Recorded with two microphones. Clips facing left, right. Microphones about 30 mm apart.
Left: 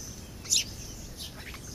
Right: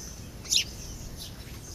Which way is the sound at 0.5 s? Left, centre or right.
Centre.